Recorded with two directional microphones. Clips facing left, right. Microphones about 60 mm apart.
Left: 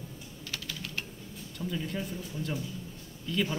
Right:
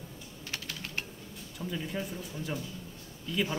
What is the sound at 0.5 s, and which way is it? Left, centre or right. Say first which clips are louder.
Typing: even; right.